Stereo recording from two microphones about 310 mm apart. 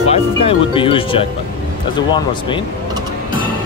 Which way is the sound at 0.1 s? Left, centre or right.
Centre.